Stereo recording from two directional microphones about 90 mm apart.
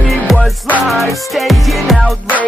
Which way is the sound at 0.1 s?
Centre (ahead or behind).